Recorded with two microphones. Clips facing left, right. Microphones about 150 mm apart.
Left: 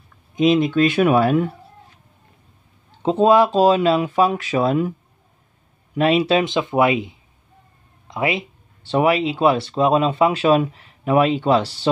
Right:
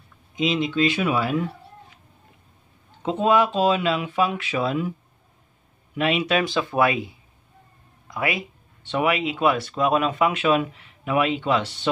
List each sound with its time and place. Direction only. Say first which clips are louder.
0.4 s speech: left 6 dB; 50° left (ahead or behind)
3.0 s speech: left 5 dB; 35° left (ahead or behind)
5.9 s speech: left 5 dB; 35° left (ahead or behind); by 7.2 s 20° left (ahead or behind)
8.1 s a sound: left 4 dB; 25° left (ahead or behind)
8.9 s speech: left 5 dB; 35° left (ahead or behind)